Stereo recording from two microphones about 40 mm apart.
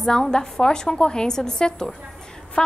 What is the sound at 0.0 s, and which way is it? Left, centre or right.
A woman's voice, centre.